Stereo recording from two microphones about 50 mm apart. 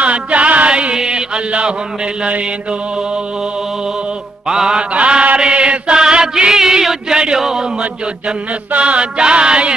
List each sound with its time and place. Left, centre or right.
0.0 s mantra: right
4.5 s mantra: centre
8.7 s music: right